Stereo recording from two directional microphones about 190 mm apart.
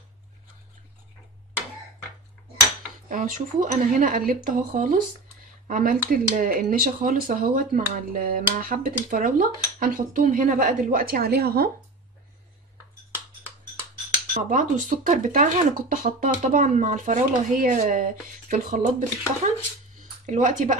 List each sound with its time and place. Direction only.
3.1 s speech: 45° right (ahead or behind)
14.3 s speech: 45° right (ahead or behind)